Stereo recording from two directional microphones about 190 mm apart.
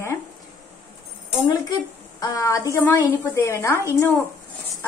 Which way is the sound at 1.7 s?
20° left (ahead or behind).